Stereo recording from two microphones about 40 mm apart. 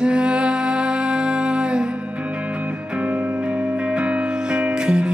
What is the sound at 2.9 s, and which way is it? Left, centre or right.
Music, right.